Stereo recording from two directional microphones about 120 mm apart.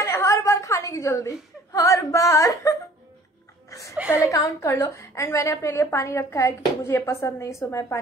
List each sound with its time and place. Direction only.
0.0 s whimper: 25° left (ahead or behind)
4.1 s a woman's voice: 25° left (ahead or behind)